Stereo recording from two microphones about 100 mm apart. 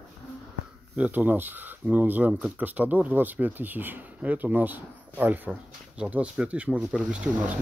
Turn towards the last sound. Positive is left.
turn(degrees=-15)  # may be behind; listen again after turning